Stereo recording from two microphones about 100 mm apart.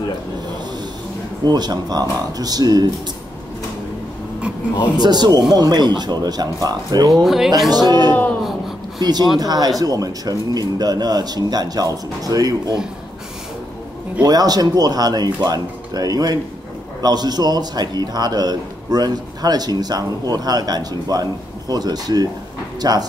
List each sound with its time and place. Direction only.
1.4 s a man's voice: 40° right (ahead or behind)
4.9 s speech: 45° right (ahead or behind)
7.1 s speech: 5° right (ahead or behind)
7.7 s speech: 45° right (ahead or behind)
8.4 s a sound: centre (ahead or behind)
9.4 s a man's voice: 40° right (ahead or behind)
14.2 s a man's voice: 40° right (ahead or behind)